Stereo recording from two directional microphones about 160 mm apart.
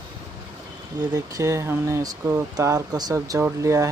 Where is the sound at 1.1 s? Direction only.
20° right (ahead or behind).